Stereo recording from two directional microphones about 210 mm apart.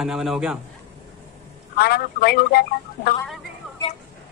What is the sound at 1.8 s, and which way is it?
A man's voice, 45° left (ahead or behind).